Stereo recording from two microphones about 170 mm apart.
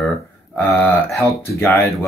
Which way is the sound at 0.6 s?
15° left (ahead or behind).